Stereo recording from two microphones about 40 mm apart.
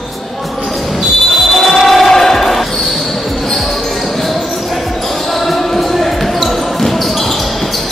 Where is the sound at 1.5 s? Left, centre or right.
Centre.